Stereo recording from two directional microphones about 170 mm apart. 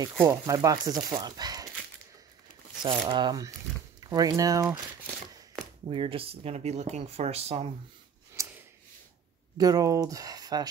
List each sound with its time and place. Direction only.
0.0 s speech: 20° right (ahead or behind)
2.8 s speech: 25° right (ahead or behind)
5.9 s speech: 30° right (ahead or behind)
8.4 s a sound: 10° right (ahead or behind)
9.6 s speech: 20° right (ahead or behind)